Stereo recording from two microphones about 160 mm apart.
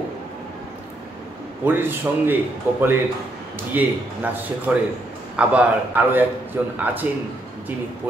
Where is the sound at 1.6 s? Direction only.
15° right (ahead or behind).